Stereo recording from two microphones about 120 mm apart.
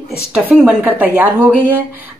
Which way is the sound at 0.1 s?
5° right (ahead or behind).